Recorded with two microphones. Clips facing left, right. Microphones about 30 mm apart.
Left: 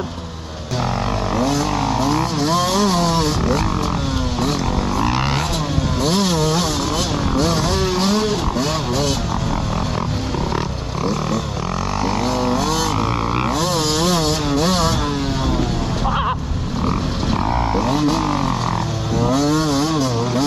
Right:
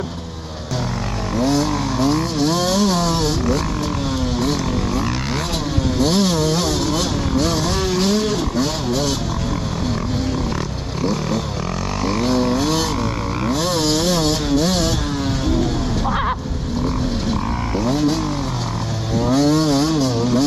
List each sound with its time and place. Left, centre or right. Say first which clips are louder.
1.6 s vehicle: even; centre
4.4 s a sound: left 2 dB; centre
5.9 s chainsaw: right 1 dB; centre
7.3 s vehicle: left 1 dB; centre
11.1 s roaring cats: even; centre
12.2 s vehicle: right 3 dB; centre
13.5 s a sound: even; centre
17.7 s vehicle: right 2 dB; centre
19.3 s vehicle: right 3 dB; centre